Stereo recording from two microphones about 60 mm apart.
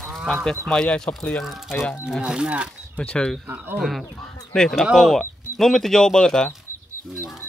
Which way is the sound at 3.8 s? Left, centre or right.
Centre.